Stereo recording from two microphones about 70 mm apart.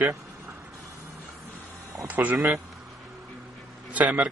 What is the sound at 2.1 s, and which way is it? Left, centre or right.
Speech, right.